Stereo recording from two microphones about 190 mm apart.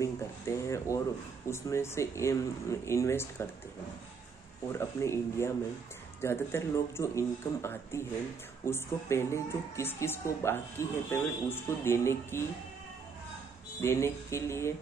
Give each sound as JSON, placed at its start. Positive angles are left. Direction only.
{"t": 0.0, "sound": "a woman's voice", "side_deg": 15}
{"t": 4.7, "sound": "a woman's voice", "side_deg": 15}
{"t": 13.7, "sound": "a woman's voice", "side_deg": 15}